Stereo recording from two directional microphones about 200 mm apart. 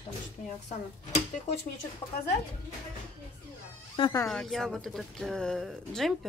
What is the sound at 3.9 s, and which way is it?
Speech, 20° left (ahead or behind).